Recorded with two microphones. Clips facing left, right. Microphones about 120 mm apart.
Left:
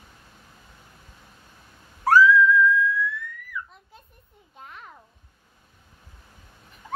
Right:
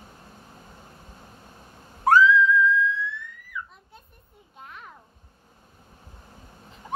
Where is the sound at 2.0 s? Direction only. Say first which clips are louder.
Left 1 dB; 20° right (ahead or behind).